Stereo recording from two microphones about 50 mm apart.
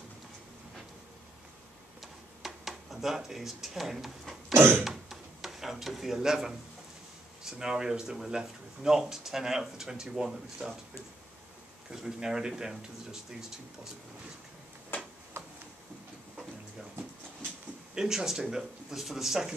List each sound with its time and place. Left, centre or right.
2.0 s a sound: centre
7.4 s speech: centre
11.9 s speech: centre
14.9 s tick-tock: left
15.3 s a sound: right
17.9 s speech: centre